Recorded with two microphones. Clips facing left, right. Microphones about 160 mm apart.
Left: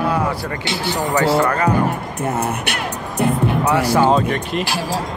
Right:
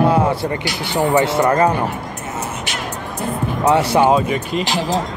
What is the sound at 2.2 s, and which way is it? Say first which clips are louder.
Speech: left 8 dB; 60° left (ahead or behind).